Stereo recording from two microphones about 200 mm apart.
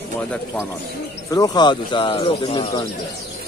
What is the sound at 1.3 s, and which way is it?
Speech, 20° left (ahead or behind).